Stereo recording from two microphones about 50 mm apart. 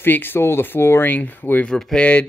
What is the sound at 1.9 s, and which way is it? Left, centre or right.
Speech, left.